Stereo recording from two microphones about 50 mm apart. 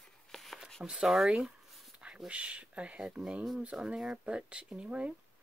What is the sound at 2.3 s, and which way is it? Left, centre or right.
Speech, right.